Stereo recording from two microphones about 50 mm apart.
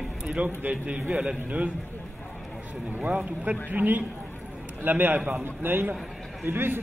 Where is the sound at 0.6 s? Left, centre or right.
Right.